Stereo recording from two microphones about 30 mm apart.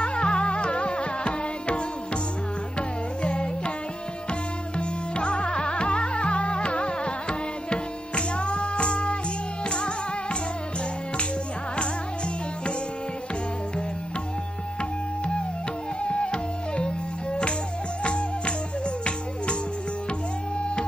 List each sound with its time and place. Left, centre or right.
0.0 s music: left
3.2 s music: left
14.8 s tabla: left
16.0 s music: left